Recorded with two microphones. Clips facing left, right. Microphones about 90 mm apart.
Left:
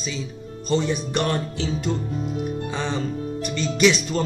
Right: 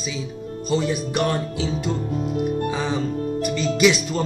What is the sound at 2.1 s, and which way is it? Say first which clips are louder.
Music: right 3 dB; 50° right (ahead or behind).